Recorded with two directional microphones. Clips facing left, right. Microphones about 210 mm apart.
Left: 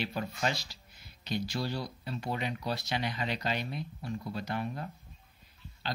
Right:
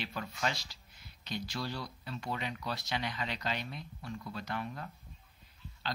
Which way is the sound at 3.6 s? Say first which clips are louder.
Left 6 dB; 10° left (ahead or behind).